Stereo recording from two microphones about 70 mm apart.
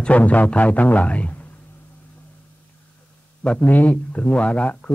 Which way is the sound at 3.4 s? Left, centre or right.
Left.